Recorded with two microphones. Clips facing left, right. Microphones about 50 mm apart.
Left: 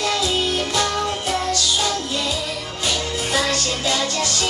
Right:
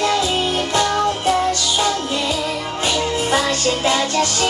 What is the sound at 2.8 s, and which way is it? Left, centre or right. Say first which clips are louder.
Music: right 4 dB; right.